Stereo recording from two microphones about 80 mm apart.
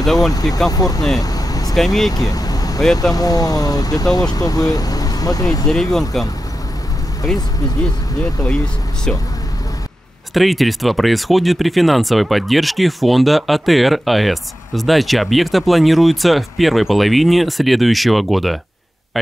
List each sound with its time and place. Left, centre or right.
0.0 s speech: centre
0.3 s speech: left
1.2 s vehicle: left
1.8 s speech: centre
2.1 s vehicle: left
3.0 s speech: left
5.7 s speech: centre
10.3 s speech: centre